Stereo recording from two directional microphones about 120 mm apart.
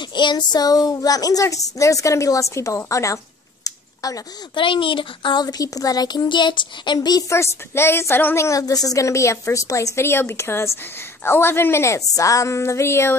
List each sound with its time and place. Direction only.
0.0 s a woman's voice: 40° left (ahead or behind)
3.6 s a sound: 30° left (ahead or behind)
4.6 s speech: 45° left (ahead or behind); by 13.1 s 20° left (ahead or behind)